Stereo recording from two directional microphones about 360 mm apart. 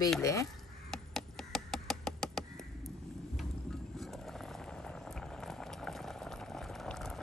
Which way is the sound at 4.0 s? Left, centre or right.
Centre.